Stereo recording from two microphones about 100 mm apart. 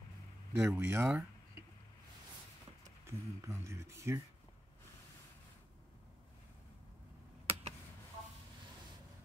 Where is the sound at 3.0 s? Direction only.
30° right (ahead or behind).